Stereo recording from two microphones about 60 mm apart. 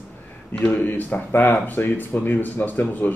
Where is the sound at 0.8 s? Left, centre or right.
Left.